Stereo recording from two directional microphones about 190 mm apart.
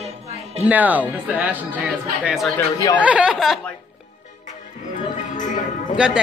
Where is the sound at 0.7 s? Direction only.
10° right (ahead or behind).